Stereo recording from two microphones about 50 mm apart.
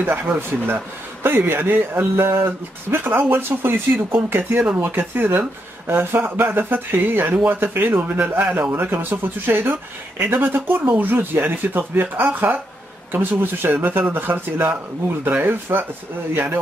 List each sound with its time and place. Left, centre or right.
0.0 s speech: right